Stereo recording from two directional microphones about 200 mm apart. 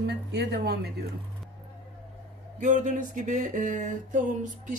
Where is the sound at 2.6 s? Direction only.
40° right (ahead or behind).